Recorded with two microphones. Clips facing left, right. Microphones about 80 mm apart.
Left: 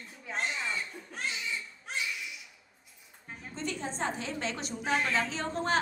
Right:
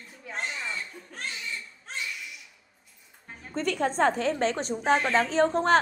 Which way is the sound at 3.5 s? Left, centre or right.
Right.